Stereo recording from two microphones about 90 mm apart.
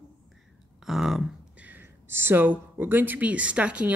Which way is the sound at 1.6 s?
25° right (ahead or behind).